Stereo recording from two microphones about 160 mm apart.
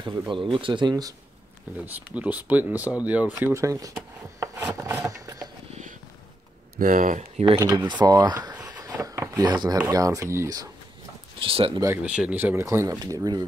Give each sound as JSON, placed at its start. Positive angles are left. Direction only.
{"t": 0.0, "sound": "speech", "side_deg": -30}
{"t": 1.9, "sound": "speech", "side_deg": -10}
{"t": 2.7, "sound": "speech", "side_deg": 20}
{"t": 3.0, "sound": "speech", "side_deg": -10}
{"t": 4.4, "sound": "filing", "side_deg": -15}
{"t": 6.8, "sound": "speech", "side_deg": -55}
{"t": 7.5, "sound": "speech", "side_deg": -25}
{"t": 8.8, "sound": "a sound", "side_deg": -20}
{"t": 9.8, "sound": "speech", "side_deg": -20}
{"t": 11.4, "sound": "speech", "side_deg": -35}
{"t": 12.0, "sound": "speech", "side_deg": -5}